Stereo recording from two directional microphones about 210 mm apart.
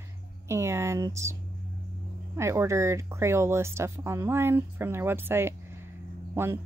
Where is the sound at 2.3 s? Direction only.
15° right (ahead or behind).